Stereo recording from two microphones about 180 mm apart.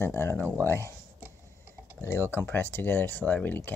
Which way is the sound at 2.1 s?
10° left (ahead or behind).